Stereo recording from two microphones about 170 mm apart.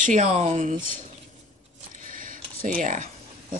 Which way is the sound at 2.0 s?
55° right (ahead or behind).